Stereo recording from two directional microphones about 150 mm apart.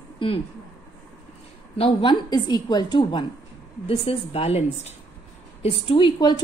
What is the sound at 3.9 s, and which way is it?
A woman's voice, 40° left (ahead or behind).